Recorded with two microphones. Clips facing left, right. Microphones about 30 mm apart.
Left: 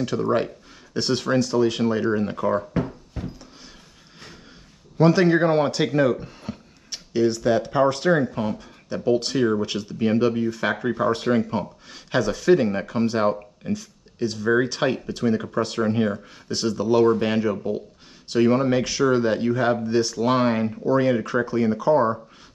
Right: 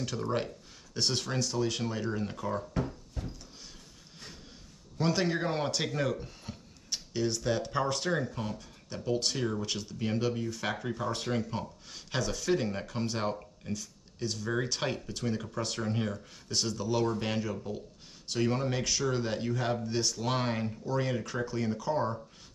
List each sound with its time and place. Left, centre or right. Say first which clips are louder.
0.0 s speech: left 10 dB; centre
2.7 s a sound: left 8 dB; left
4.9 s speech: left 12 dB; left
11.9 s speech: left 11 dB; centre